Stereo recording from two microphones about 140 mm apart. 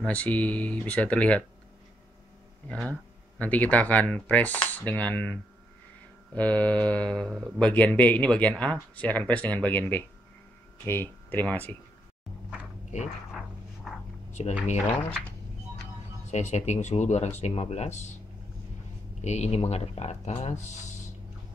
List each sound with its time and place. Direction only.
0.0 s speech: 10° left (ahead or behind)
2.7 s speech: 10° left (ahead or behind)
14.4 s speech: 50° left (ahead or behind)
16.3 s speech: 55° left (ahead or behind)
19.2 s speech: 50° left (ahead or behind)